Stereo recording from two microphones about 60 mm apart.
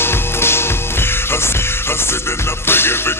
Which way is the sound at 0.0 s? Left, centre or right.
Left.